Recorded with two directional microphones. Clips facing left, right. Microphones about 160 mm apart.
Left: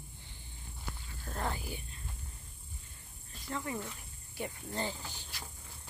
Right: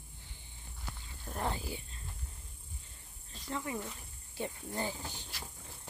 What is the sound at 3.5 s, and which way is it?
Speech, 15° right (ahead or behind).